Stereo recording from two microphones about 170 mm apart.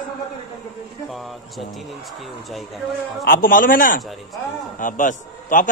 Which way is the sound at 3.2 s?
55° left (ahead or behind).